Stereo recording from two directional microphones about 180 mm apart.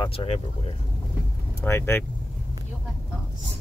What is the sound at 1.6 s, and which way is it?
Speech, 10° left (ahead or behind).